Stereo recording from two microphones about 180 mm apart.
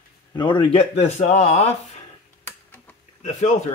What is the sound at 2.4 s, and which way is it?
Tick-tock, 10° left (ahead or behind).